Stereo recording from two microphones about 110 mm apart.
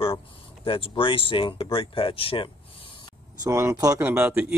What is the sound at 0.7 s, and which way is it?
Speech, 55° left (ahead or behind).